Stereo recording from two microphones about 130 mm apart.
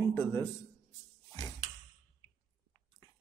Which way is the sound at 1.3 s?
30° left (ahead or behind).